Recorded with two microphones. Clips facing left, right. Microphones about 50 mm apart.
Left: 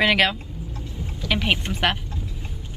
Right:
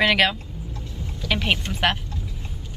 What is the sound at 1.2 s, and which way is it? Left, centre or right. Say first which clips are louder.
Music: even; centre.